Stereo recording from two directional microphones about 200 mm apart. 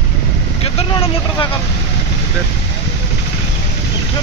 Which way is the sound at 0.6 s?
25° left (ahead or behind).